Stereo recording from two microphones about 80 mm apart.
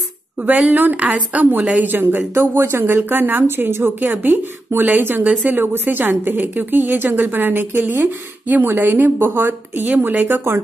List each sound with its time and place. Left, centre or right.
0.4 s a woman's voice: centre